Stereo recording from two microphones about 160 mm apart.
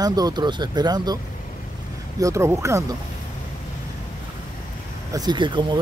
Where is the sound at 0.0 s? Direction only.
25° right (ahead or behind).